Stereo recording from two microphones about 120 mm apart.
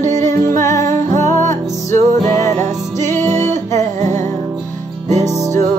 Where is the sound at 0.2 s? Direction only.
25° left (ahead or behind).